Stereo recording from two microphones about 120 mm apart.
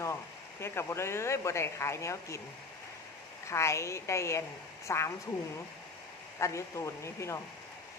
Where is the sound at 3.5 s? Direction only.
25° left (ahead or behind).